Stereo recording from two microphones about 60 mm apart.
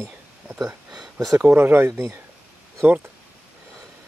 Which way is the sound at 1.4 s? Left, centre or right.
Right.